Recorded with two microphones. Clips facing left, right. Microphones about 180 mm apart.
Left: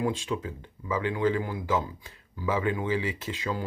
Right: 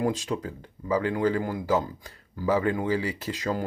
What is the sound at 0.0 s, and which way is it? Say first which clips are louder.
Speech: right 2 dB; 40° right (ahead or behind).